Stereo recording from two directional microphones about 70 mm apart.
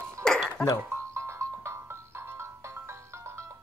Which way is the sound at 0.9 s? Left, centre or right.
Right.